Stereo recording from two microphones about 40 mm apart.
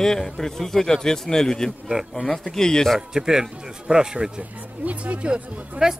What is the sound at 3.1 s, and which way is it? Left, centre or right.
Speech, centre.